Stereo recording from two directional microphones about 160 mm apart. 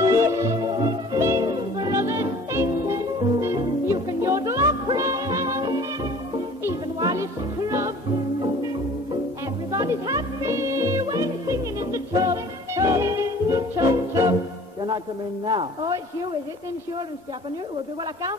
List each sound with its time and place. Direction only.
0.0 s music: 20° right (ahead or behind)
9.7 s music: 20° right (ahead or behind)
15.4 s speech: 25° right (ahead or behind)